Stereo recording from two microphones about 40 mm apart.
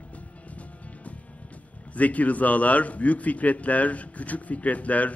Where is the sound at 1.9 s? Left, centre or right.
Left.